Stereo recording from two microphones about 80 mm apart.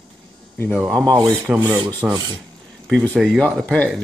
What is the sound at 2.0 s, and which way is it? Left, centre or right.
Speech, right.